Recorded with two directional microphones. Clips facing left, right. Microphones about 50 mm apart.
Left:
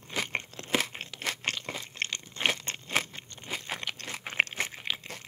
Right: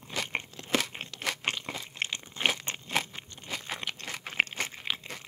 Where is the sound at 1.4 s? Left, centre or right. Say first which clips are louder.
Even; centre.